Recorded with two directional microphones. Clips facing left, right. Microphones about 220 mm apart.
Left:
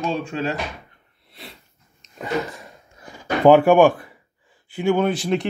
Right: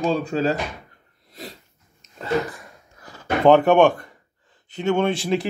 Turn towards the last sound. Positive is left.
turn(degrees=0)  # may be behind; listen again after turning